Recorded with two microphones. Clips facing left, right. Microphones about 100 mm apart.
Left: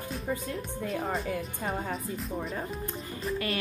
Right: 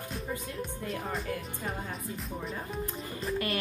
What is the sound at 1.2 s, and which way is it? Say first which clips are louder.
Speech: left 3 dB; centre (ahead or behind).